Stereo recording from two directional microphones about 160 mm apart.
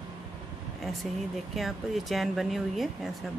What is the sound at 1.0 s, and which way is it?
Speech, centre (ahead or behind).